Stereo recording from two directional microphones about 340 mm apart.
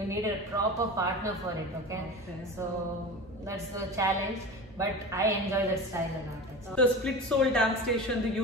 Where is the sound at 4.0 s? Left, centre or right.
Centre.